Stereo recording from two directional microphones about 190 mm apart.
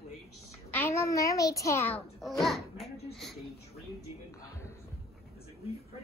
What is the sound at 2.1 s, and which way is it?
Speech, centre (ahead or behind).